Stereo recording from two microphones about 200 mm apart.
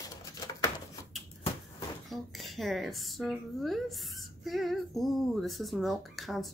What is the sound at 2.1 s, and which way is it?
Speech, centre (ahead or behind).